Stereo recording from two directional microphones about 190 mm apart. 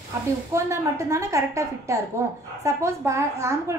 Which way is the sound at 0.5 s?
15° right (ahead or behind).